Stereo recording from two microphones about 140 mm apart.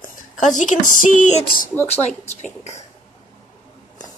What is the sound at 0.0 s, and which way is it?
Speech, 70° left (ahead or behind).